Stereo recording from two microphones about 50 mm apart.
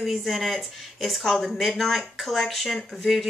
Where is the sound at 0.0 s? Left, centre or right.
Centre.